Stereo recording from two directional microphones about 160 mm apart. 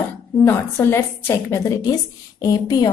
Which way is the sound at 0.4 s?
15° left (ahead or behind).